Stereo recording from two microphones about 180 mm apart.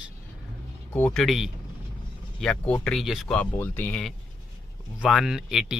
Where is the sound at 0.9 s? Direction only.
5° left (ahead or behind).